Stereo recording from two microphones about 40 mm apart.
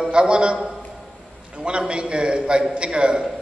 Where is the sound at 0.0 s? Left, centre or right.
Right.